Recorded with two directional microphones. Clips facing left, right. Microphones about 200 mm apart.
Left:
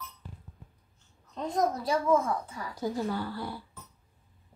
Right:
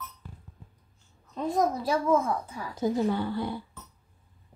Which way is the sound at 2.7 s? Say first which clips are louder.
Right 5 dB; 20° right (ahead or behind).